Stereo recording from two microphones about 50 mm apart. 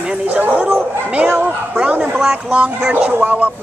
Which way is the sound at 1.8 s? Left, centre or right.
Right.